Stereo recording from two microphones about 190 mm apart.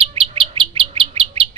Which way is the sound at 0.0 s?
30° right (ahead or behind).